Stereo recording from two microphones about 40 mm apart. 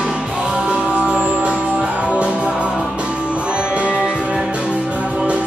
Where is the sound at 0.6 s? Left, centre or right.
Right.